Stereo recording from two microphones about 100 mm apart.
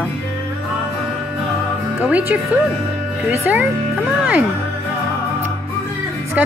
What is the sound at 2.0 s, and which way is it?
Speech, 15° right (ahead or behind).